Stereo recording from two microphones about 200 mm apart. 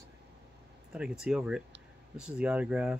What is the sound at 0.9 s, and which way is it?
Speech, 5° right (ahead or behind).